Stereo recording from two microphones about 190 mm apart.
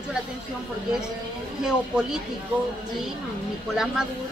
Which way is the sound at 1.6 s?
5° right (ahead or behind).